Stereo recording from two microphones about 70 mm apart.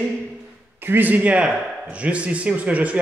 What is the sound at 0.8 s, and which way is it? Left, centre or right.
A man's voice, right.